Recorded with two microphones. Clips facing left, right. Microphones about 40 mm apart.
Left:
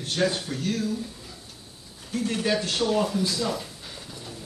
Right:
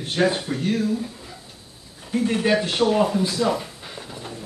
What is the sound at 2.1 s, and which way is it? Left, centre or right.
Speech, right.